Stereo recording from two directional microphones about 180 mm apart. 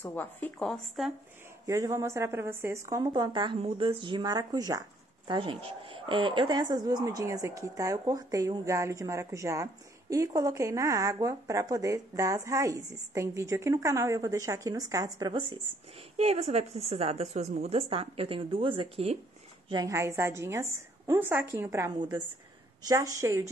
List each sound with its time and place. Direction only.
0.0 s speech: 10° left (ahead or behind)
1.7 s a woman's voice: 15° right (ahead or behind)
16.2 s a woman's voice: 35° right (ahead or behind)
19.7 s speech: 20° right (ahead or behind)